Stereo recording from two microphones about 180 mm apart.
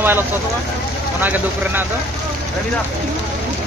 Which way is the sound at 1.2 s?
10° right (ahead or behind).